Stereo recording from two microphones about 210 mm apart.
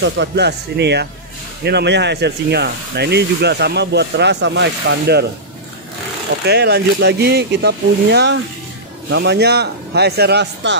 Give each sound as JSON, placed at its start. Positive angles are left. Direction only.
{"t": 0.0, "sound": "speech", "side_deg": -55}
{"t": 6.4, "sound": "speech", "side_deg": -50}